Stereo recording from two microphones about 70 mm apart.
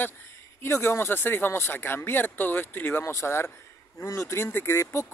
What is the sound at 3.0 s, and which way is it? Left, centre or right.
Speech, left.